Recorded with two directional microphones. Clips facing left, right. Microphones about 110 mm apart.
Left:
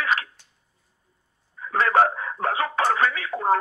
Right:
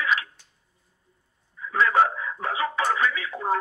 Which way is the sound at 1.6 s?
55° left (ahead or behind).